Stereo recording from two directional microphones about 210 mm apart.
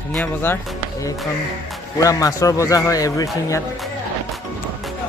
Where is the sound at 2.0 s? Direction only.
15° left (ahead or behind).